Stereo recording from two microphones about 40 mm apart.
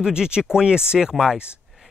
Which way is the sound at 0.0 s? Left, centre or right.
Centre.